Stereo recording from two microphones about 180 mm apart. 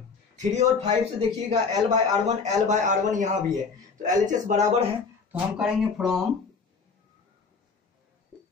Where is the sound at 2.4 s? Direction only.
40° right (ahead or behind).